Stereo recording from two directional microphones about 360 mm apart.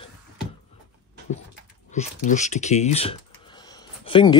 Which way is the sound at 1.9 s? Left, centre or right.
Centre.